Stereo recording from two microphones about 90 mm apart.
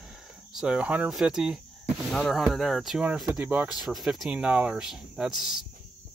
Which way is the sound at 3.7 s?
5° right (ahead or behind).